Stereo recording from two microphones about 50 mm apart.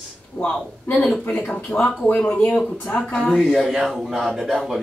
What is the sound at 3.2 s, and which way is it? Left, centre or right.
Speech, centre.